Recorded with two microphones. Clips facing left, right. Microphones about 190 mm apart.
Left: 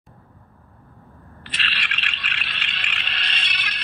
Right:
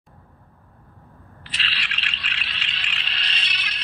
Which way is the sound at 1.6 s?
55° left (ahead or behind).